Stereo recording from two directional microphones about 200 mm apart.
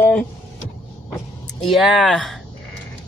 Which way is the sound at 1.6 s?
Centre (ahead or behind).